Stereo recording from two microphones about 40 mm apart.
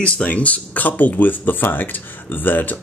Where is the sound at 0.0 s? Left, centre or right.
Left.